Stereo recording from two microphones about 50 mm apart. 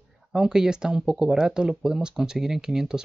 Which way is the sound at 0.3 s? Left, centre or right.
Centre.